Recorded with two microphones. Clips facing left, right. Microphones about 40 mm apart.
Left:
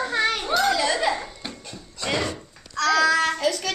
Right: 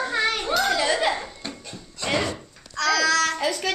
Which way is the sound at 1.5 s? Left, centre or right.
Centre.